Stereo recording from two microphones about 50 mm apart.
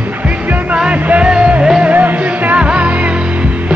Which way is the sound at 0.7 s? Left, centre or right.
Right.